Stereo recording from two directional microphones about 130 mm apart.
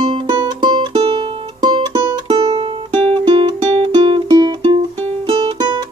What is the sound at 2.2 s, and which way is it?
Music, 45° right (ahead or behind).